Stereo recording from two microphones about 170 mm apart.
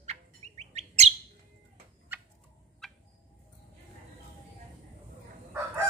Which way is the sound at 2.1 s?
10° right (ahead or behind).